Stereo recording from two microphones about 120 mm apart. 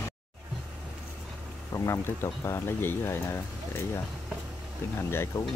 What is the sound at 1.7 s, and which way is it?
Speech, 25° left (ahead or behind).